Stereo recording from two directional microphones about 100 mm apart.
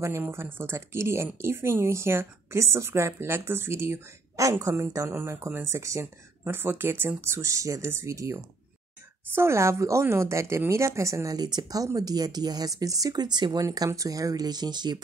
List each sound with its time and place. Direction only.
0.0 s speech: 25° right (ahead or behind); by 15.0 s 45° right (ahead or behind)